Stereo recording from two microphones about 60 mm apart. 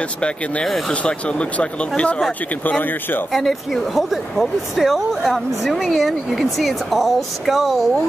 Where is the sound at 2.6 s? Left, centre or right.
Left.